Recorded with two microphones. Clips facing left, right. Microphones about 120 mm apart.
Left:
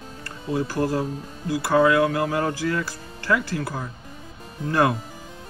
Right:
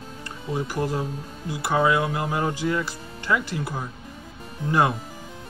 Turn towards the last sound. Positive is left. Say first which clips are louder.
# left 1 dB
turn(degrees=-20)  # may be behind; listen again after turning